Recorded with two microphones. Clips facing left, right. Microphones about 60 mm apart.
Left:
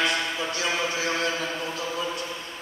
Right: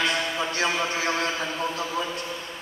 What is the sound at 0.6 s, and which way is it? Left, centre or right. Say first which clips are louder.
Speech: right 2 dB; right.